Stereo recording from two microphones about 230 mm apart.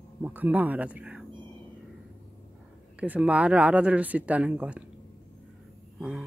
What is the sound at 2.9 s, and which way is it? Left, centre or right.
Speech, centre.